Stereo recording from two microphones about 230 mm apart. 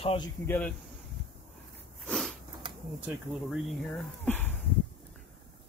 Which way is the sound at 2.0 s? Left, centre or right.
Centre.